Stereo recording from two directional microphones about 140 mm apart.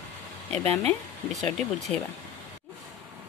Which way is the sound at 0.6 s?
50° right (ahead or behind).